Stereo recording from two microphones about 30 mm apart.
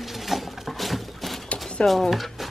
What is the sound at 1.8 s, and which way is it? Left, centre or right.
Speech, left.